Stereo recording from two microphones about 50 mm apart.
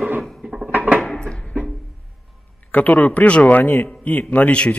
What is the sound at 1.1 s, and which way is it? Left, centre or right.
Music, centre.